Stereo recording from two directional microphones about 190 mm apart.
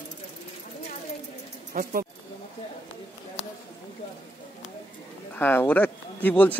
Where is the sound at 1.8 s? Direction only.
50° right (ahead or behind).